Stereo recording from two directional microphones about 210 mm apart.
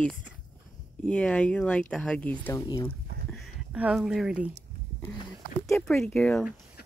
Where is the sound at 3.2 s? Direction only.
5° right (ahead or behind).